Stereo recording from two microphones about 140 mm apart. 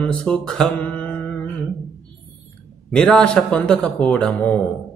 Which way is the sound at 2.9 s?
5° left (ahead or behind).